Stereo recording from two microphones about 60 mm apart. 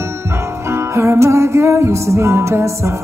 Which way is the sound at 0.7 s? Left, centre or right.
Right.